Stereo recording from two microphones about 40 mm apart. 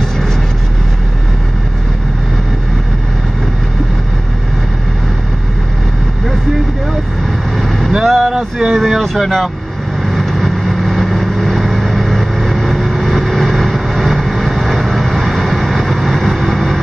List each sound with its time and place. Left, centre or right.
7.5 s vehicle: centre
8.4 s a sound: centre
8.7 s speech: centre
10.0 s vehicle: centre